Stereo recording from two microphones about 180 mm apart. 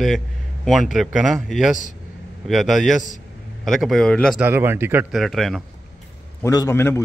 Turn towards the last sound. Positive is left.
turn(degrees=15)  # may be behind; listen again after turning